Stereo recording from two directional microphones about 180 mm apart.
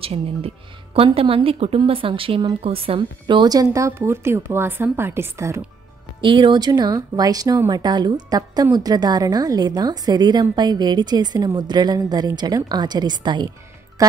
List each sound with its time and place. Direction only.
0.0 s speech: 35° right (ahead or behind); by 5.6 s 15° right (ahead or behind)
6.2 s speech: 25° right (ahead or behind)